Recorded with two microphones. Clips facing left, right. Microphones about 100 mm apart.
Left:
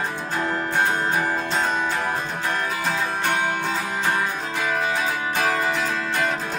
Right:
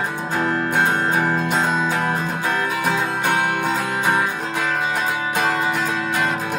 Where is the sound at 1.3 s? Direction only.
15° right (ahead or behind).